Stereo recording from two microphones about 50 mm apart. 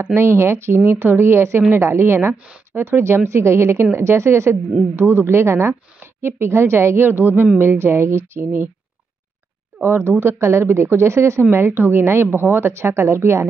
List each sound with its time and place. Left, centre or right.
0.0 s a woman's voice: right
2.3 s speech: right
2.7 s a woman's voice: right
4.9 s a woman's voice: right
7.1 s a woman's voice: right
9.8 s a woman's voice: right
11.5 s a woman's voice: right